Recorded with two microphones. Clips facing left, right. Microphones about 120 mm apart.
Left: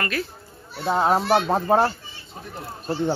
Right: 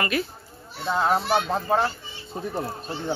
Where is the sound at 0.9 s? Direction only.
30° left (ahead or behind).